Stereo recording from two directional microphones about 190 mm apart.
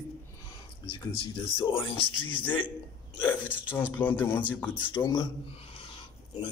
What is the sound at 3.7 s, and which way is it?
Speech, 10° left (ahead or behind).